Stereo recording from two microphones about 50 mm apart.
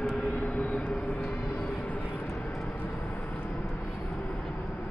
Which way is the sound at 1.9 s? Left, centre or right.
Left.